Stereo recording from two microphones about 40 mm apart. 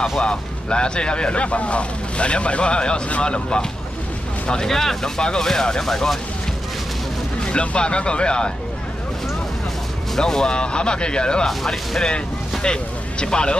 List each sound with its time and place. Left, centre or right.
0.2 s speech: left
4.6 s speech: centre
7.4 s speech: left
10.1 s speech: centre
11.4 s speech: centre
12.7 s speech: left